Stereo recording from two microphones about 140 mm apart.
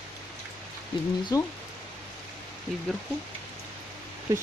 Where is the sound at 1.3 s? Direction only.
25° left (ahead or behind).